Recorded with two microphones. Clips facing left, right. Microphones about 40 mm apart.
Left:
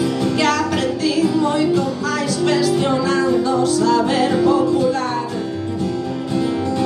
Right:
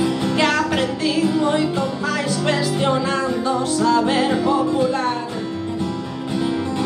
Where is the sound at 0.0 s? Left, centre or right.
Right.